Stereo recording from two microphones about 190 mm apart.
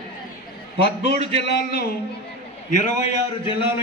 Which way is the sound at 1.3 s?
65° left (ahead or behind).